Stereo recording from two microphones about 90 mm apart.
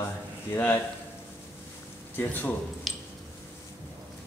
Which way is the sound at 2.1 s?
20° left (ahead or behind).